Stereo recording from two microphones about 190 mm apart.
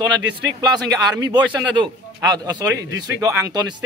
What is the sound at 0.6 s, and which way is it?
Speech, 20° right (ahead or behind).